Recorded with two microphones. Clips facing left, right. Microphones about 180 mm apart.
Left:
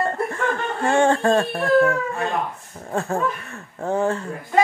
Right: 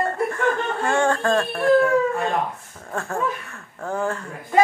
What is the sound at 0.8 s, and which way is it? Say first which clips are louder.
Speech: left 4 dB; 25° left (ahead or behind).